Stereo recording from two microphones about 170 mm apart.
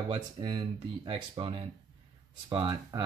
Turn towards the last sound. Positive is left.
turn(degrees=-25)  # may be behind; listen again after turning